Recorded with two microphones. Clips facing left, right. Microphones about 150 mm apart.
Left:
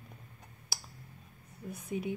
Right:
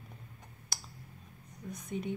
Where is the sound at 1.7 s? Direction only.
5° left (ahead or behind).